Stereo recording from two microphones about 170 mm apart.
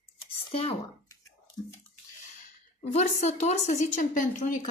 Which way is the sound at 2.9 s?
40° left (ahead or behind).